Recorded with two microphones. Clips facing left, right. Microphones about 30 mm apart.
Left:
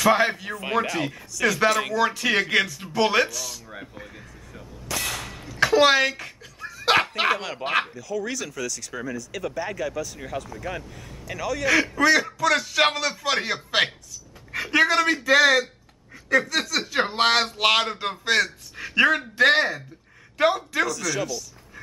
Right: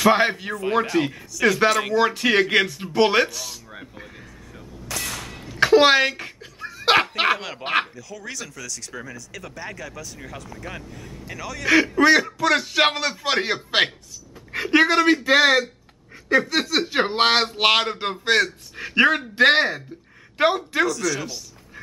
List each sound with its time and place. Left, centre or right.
0.0 s speech: right
3.7 s a sound: centre
5.5 s dog: centre
7.3 s speech: centre
11.6 s speech: centre
20.8 s speech: centre